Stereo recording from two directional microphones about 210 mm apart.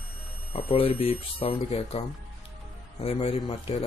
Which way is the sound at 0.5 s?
25° left (ahead or behind).